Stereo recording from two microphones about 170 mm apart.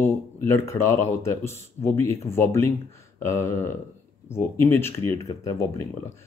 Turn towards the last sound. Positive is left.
turn(degrees=15)  # may be behind; listen again after turning